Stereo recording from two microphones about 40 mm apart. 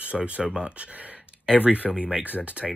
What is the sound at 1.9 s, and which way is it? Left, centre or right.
Speech, centre.